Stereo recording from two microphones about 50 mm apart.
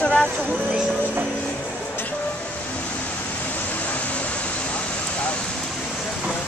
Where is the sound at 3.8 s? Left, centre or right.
Left.